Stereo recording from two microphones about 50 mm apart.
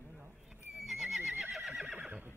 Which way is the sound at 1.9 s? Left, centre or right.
Right.